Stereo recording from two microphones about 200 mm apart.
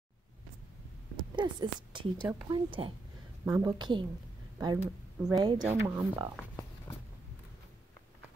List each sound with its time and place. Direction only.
1.3 s speech: 20° right (ahead or behind)
5.2 s speech: 5° right (ahead or behind)